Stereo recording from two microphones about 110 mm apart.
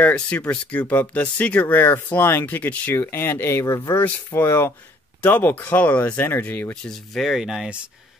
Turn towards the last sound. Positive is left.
turn(degrees=-5)  # may be behind; listen again after turning